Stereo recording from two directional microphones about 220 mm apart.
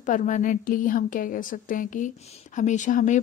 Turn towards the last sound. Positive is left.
turn(degrees=35)  # may be behind; listen again after turning